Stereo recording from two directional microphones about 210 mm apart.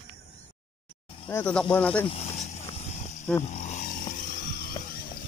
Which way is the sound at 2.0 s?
30° left (ahead or behind).